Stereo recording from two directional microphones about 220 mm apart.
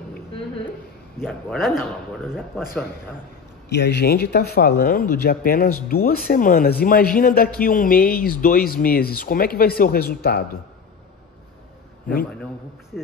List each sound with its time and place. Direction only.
1.2 s speech: centre (ahead or behind)
3.6 s a man's voice: 50° left (ahead or behind)